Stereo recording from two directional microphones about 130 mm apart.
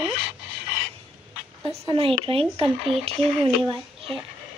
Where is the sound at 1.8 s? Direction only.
45° right (ahead or behind).